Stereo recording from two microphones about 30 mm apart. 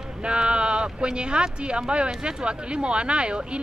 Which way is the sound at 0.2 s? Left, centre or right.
Right.